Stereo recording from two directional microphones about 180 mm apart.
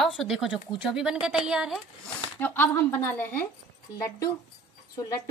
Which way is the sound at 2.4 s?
10° left (ahead or behind).